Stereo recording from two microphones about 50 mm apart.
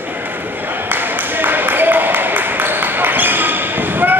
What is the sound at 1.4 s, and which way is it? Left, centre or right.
Basketball bounce, right.